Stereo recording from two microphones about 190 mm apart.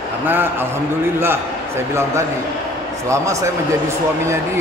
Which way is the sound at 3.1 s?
15° right (ahead or behind).